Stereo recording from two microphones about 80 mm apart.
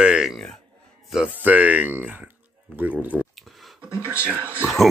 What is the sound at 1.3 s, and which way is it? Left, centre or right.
Speech, centre.